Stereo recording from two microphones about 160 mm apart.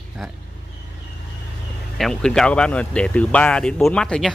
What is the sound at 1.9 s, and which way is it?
Speech, centre (ahead or behind).